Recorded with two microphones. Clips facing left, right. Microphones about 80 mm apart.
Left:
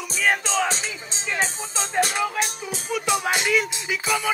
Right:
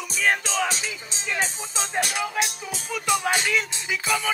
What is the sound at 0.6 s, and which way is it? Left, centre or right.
Music, left.